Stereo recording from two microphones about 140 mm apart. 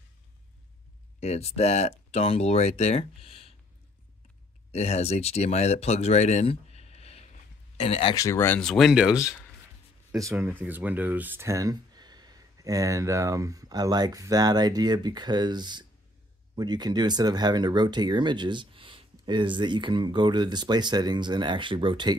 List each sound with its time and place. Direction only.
1.2 s speech: 50° left (ahead or behind)
4.7 s speech: 50° left (ahead or behind)
8.1 s speech: 25° left (ahead or behind)
8.5 s speech: centre (ahead or behind)
10.1 s speech: 20° right (ahead or behind)